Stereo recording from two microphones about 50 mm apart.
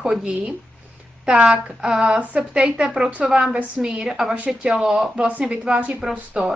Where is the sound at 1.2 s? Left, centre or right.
Centre.